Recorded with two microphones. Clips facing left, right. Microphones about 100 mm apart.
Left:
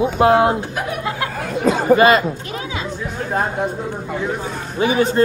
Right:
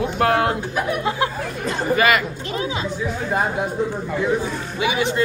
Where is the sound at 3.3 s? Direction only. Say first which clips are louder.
Left 2 dB; 5° right (ahead or behind).